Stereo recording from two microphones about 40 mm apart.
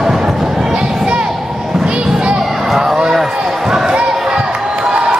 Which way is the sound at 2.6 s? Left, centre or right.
Centre.